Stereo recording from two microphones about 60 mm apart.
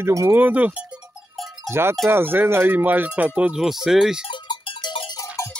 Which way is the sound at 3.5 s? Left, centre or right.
Centre.